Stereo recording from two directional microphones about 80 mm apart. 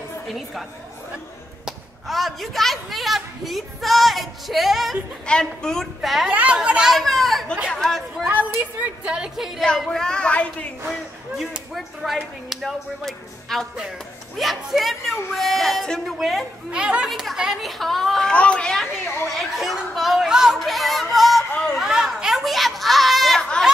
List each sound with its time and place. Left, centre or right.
1.7 s speech: centre
5.2 s speech: centre
6.3 s a woman's voice: centre
6.9 s speech: centre
8.3 s a woman's voice: centre
9.8 s speech: centre
10.9 s speech: centre
16.7 s a woman's voice: centre
19.0 s speech: centre
21.7 s a sound: centre